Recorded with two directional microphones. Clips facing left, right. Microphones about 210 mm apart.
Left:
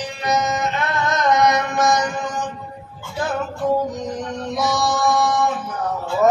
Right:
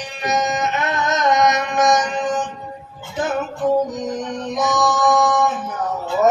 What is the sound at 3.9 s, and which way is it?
Music, 20° right (ahead or behind).